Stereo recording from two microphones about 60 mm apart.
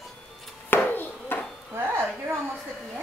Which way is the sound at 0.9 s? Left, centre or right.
Left.